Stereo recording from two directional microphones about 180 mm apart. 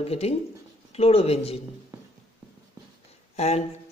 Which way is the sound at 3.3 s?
35° left (ahead or behind).